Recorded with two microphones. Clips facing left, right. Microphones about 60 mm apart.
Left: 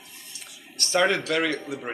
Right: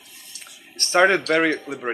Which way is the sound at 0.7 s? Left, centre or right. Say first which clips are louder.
Right 5 dB; right.